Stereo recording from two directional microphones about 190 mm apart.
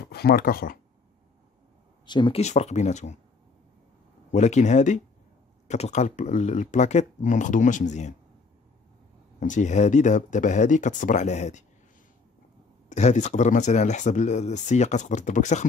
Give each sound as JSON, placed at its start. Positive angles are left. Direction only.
{"t": 0.1, "sound": "speech", "side_deg": 55}
{"t": 2.0, "sound": "speech", "side_deg": 25}
{"t": 4.3, "sound": "speech", "side_deg": 35}
{"t": 9.4, "sound": "speech", "side_deg": 40}
{"t": 12.9, "sound": "speech", "side_deg": 40}